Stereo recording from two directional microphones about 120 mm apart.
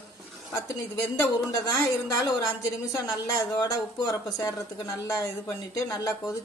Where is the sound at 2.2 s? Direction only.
30° left (ahead or behind).